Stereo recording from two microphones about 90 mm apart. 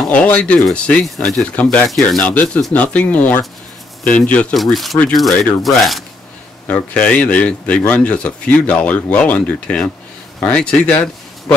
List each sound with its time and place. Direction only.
0.1 s speech: 15° left (ahead or behind)
1.0 s speech: centre (ahead or behind)
1.4 s speech: 15° left (ahead or behind)
4.6 s speech: centre (ahead or behind)
6.7 s speech: 15° left (ahead or behind)